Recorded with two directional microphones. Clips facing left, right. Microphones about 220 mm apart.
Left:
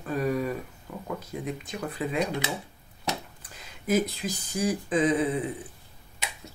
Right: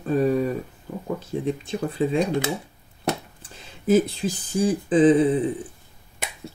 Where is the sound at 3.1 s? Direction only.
55° right (ahead or behind).